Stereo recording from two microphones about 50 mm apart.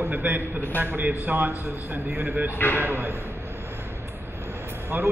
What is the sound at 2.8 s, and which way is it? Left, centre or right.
Speech, right.